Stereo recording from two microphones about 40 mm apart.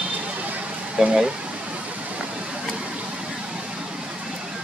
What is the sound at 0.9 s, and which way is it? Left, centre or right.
Speech, right.